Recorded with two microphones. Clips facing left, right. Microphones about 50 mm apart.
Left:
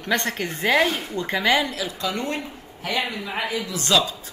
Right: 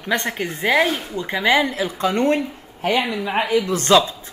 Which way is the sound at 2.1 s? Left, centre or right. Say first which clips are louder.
Right 9 dB; right.